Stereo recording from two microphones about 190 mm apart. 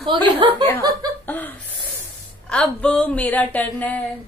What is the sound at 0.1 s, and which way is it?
Speech, 25° right (ahead or behind).